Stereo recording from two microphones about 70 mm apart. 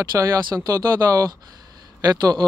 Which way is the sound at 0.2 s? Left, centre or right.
Right.